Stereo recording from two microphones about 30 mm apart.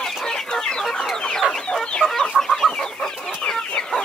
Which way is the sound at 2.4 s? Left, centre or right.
Centre.